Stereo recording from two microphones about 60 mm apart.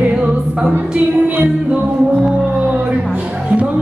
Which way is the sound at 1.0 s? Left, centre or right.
Right.